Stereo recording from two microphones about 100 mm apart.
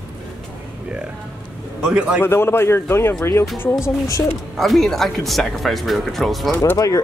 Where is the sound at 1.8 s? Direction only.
10° right (ahead or behind).